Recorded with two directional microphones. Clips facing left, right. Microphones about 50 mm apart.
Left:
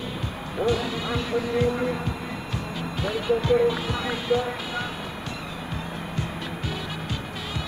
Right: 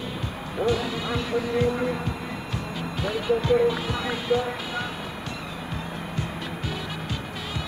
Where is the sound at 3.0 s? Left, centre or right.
Right.